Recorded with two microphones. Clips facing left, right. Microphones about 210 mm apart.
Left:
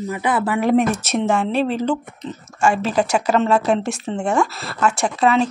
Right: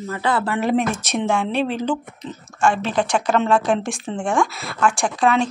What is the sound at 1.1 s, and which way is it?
Speech, 5° left (ahead or behind).